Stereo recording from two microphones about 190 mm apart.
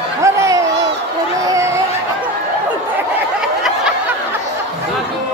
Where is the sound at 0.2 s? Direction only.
15° right (ahead or behind).